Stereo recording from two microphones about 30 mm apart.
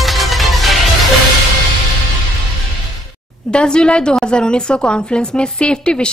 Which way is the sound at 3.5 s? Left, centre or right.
Left.